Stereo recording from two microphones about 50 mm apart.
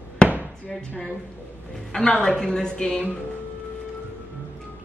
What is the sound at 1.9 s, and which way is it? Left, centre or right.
A woman's voice, centre.